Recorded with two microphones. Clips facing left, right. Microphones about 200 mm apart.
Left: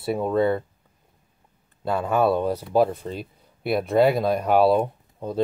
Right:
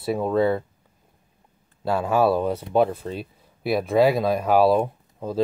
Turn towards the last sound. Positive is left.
turn(degrees=0)  # may be behind; listen again after turning